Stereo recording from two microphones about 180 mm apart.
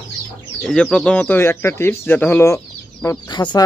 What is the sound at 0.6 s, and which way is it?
Speech, 5° left (ahead or behind).